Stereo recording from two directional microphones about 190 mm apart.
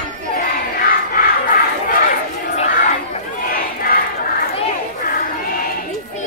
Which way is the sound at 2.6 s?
45° left (ahead or behind).